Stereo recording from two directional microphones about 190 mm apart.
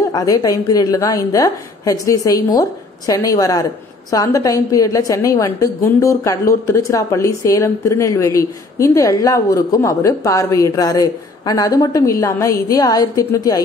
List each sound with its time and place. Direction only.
0.1 s a woman's voice: 20° left (ahead or behind)